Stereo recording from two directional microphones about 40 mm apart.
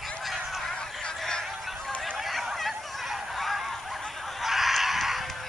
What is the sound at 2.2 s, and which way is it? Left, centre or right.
Fowl, centre.